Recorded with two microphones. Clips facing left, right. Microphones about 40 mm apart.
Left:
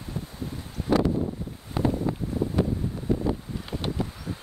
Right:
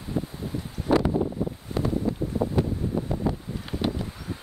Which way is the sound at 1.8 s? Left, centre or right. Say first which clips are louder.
Left 3 dB; centre.